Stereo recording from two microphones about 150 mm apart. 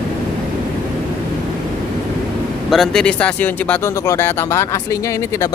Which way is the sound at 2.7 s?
Centre (ahead or behind).